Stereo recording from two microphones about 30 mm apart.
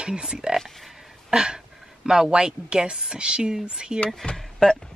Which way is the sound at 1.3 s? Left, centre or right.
Right.